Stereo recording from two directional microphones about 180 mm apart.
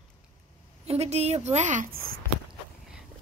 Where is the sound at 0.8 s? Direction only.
35° right (ahead or behind).